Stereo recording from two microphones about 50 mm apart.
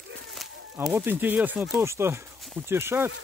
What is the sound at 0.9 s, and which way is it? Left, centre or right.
Speech, right.